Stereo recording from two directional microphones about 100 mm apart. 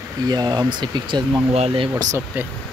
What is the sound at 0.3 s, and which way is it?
Speech, 45° right (ahead or behind).